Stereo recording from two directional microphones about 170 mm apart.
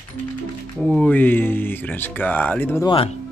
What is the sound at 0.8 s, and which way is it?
Speech, 10° left (ahead or behind).